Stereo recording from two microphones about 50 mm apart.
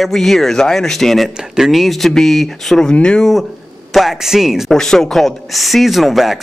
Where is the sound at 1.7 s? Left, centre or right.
Centre.